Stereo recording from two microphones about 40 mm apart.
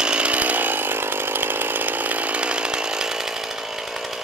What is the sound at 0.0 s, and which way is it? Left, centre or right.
Chainsaw, right.